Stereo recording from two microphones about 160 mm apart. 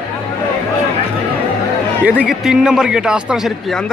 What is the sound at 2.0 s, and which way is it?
A man's voice, 5° right (ahead or behind).